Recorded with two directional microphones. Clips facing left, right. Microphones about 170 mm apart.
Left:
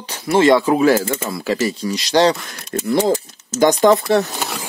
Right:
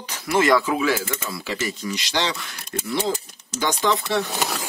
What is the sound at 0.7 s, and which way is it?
Speech, 45° left (ahead or behind).